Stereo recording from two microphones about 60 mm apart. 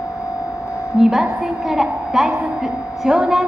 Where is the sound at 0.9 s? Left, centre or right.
Centre.